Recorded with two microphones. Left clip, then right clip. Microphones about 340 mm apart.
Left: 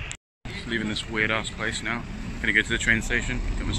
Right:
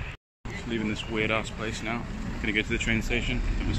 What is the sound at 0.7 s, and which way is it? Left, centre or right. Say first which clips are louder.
Speech: left 3 dB; centre.